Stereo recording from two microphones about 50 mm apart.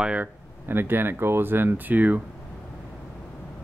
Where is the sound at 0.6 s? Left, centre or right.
Right.